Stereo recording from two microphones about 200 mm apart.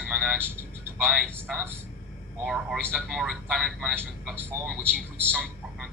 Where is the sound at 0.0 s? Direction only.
Centre (ahead or behind).